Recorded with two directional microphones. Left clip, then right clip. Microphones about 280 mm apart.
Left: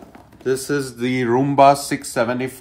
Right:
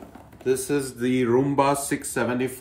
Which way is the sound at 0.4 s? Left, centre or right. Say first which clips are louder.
Left 3 dB; left.